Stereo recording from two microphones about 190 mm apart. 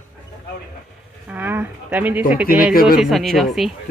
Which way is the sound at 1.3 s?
10° right (ahead or behind).